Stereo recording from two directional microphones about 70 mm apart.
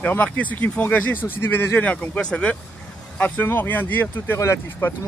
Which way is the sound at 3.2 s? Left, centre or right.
Left.